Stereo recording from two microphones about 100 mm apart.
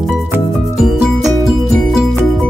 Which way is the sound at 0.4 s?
Centre (ahead or behind).